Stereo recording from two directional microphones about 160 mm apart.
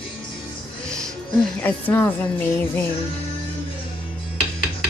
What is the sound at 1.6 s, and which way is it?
Speech, 15° left (ahead or behind).